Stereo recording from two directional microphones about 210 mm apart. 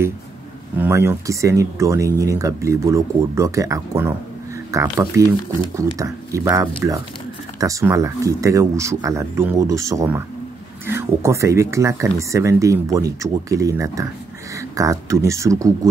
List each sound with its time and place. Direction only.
0.7 s speech: 10° right (ahead or behind)